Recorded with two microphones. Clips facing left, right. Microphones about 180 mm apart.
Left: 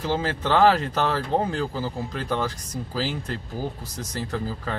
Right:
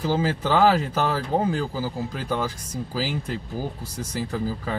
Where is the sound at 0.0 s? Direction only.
10° right (ahead or behind).